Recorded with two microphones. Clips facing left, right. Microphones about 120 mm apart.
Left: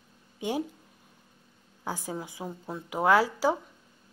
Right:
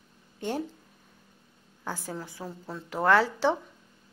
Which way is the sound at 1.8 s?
15° left (ahead or behind).